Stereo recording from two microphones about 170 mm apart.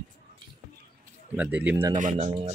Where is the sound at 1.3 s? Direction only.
10° right (ahead or behind).